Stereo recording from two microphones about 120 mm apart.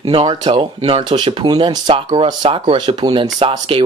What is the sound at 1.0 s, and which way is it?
Speech, 40° right (ahead or behind).